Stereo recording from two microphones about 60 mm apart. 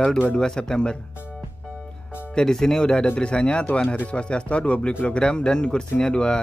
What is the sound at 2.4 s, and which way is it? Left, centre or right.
Speech, centre.